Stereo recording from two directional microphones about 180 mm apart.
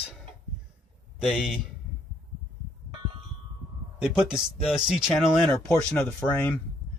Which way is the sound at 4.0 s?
5° right (ahead or behind).